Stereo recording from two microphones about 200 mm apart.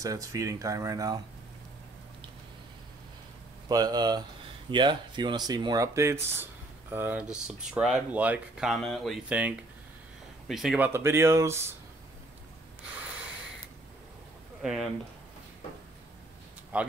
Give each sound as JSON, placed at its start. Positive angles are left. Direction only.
{"t": 0.0, "sound": "speech", "side_deg": -15}
{"t": 3.6, "sound": "speech", "side_deg": -20}
{"t": 10.9, "sound": "speech", "side_deg": -10}
{"t": 14.6, "sound": "speech", "side_deg": 0}
{"t": 16.7, "sound": "speech", "side_deg": -5}